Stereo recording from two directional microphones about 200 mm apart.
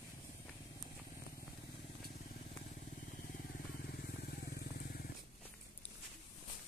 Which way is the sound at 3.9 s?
50° left (ahead or behind).